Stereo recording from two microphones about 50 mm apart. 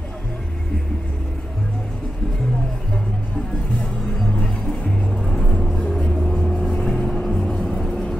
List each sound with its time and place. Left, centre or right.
4.6 s music: centre
5.8 s vehicle: centre
7.2 s music: centre
7.9 s vehicle: left